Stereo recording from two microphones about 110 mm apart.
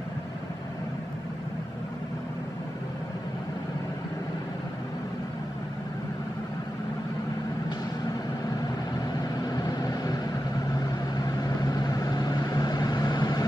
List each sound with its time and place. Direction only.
9.2 s vehicle: 35° left (ahead or behind)